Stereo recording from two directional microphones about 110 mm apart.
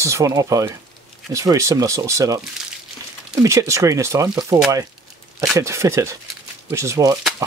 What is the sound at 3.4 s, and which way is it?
Speech, 25° right (ahead or behind).